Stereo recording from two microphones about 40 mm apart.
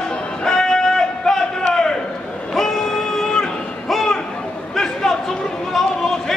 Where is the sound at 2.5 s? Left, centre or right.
Centre.